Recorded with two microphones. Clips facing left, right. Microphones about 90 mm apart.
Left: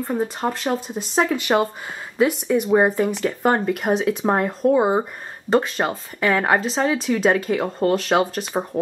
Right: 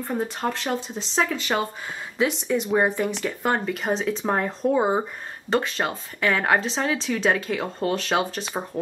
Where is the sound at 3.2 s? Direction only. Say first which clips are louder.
Left 5 dB; centre (ahead or behind).